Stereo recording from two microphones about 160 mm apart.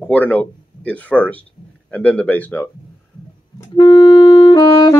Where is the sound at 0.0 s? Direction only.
10° left (ahead or behind).